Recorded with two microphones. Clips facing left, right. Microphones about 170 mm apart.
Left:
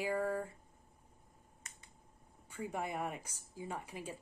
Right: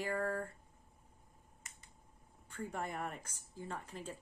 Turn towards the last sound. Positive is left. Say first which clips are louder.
# left 1 dB
turn(degrees=10)  # may be behind; listen again after turning